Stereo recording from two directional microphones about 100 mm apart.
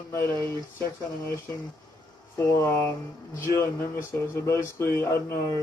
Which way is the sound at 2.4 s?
35° left (ahead or behind).